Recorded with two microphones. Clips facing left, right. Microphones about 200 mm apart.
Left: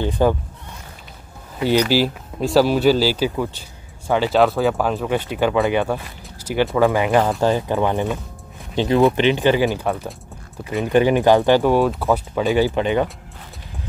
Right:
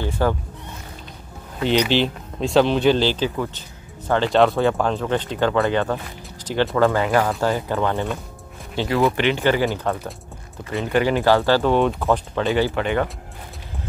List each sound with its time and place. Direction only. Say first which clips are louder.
0.0 s speech: left 4 dB; 15° left (ahead or behind)
1.6 s speech: left 2 dB; 5° left (ahead or behind)